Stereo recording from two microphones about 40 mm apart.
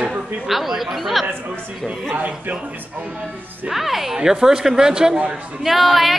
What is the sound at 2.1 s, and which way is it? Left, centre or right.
Speech, right.